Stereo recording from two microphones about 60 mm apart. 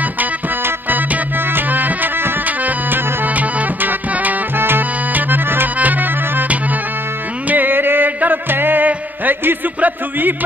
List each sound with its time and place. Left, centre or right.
0.2 s music: right
9.8 s speech: right